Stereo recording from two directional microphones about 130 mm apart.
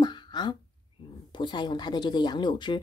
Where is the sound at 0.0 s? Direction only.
35° left (ahead or behind).